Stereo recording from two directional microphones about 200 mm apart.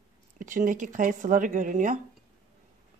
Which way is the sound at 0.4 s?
40° right (ahead or behind).